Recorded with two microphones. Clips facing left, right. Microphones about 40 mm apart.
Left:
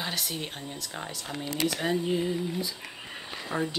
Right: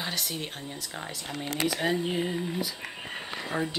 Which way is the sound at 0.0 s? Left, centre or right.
Centre.